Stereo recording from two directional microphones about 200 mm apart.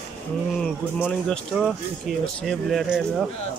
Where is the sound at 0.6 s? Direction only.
5° left (ahead or behind).